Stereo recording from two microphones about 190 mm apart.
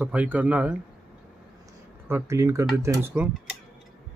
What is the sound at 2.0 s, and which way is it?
Speech, 15° right (ahead or behind).